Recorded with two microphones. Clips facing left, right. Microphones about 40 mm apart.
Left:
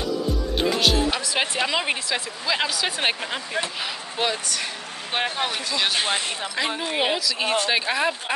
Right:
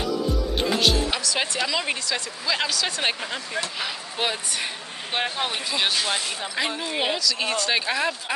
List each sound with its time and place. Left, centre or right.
0.6 s speech: centre
1.2 s speech: left
4.2 s speech: centre
5.1 s speech: centre
5.5 s speech: centre
5.9 s speech: left
7.0 s speech: centre